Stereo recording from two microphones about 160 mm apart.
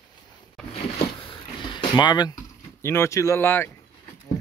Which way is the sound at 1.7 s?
25° left (ahead or behind).